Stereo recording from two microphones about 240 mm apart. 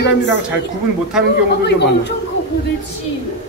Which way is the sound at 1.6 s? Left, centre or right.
Left.